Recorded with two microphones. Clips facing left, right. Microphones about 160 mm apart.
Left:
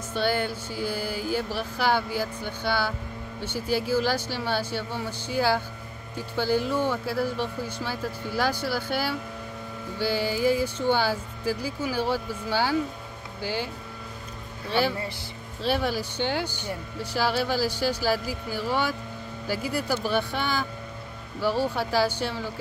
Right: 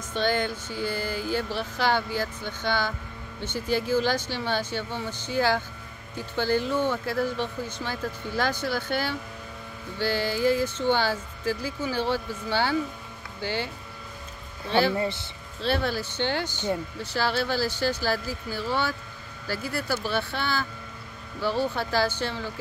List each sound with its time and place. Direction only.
0.1 s speech: 10° left (ahead or behind)
14.7 s speech: 10° left (ahead or behind)
15.0 s speech: 25° right (ahead or behind)
15.6 s speech: 10° left (ahead or behind)